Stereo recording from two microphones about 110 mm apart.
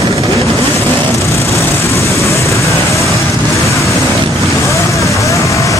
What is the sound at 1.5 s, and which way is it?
Vehicle, 25° left (ahead or behind).